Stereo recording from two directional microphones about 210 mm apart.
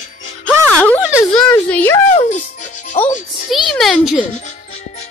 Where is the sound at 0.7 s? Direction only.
5° left (ahead or behind).